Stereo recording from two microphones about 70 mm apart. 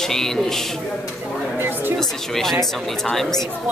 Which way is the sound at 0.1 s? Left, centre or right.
Centre.